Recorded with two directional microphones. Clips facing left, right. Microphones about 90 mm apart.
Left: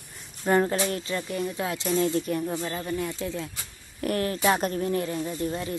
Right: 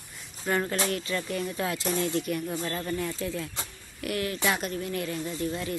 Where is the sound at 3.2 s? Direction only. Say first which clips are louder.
Left 1 dB; 25° left (ahead or behind).